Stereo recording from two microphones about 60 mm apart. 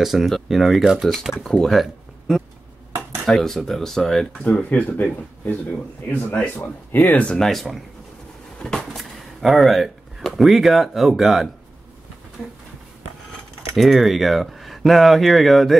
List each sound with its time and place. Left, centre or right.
0.0 s speech: centre
1.4 s speech: centre
4.5 s speech: left
7.2 s speech: centre
8.6 s a sound: centre
9.4 s speech: centre
13.7 s speech: centre